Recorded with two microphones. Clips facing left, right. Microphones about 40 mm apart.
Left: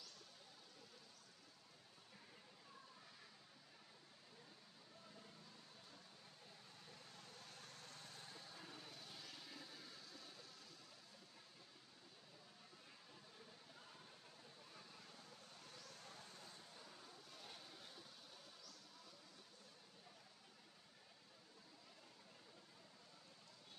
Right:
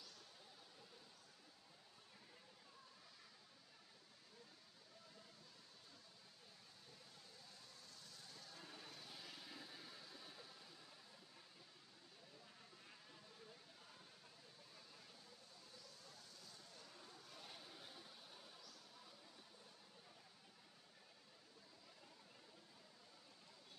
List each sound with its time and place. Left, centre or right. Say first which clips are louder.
7.3 s vehicle: left 4 dB; left
8.5 s vehicle: left 1 dB; centre
16.0 s a sound: left 4 dB; left
16.7 s vehicle: left 1 dB; centre